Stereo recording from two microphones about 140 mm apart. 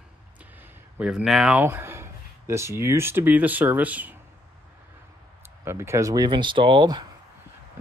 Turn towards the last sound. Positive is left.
turn(degrees=-30)  # may be behind; listen again after turning